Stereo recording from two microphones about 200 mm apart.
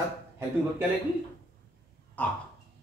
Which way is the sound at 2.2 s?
10° left (ahead or behind).